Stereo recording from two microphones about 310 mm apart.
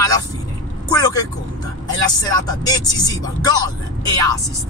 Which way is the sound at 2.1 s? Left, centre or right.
Centre.